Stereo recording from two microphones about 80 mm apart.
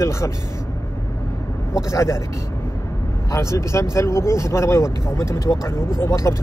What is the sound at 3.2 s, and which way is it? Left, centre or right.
Speech, left.